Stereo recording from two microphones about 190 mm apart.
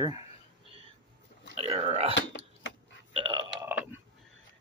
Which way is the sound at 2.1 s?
70° left (ahead or behind).